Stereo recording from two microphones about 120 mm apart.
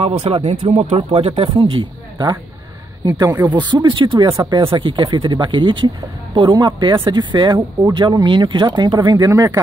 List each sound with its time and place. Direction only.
0.0 s speech: 50° right (ahead or behind)
3.3 s speech: 15° right (ahead or behind)
3.5 s speech: 40° right (ahead or behind)
4.3 s speech: 25° right (ahead or behind)
4.6 s speech: 45° right (ahead or behind)
9.3 s speech: 25° right (ahead or behind)